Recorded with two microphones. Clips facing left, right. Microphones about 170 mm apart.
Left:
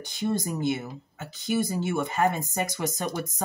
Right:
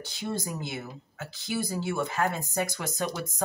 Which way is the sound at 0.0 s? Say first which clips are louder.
Left 5 dB; 20° left (ahead or behind).